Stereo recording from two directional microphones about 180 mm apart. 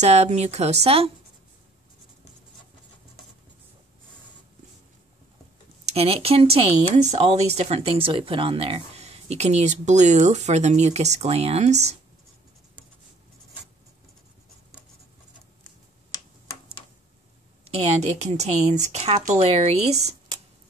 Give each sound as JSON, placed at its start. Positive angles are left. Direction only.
{"t": 0.0, "sound": "speech", "side_deg": -35}
{"t": 5.9, "sound": "speech", "side_deg": -35}
{"t": 17.6, "sound": "speech", "side_deg": -35}